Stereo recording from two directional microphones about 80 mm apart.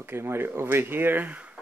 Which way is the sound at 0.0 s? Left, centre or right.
Right.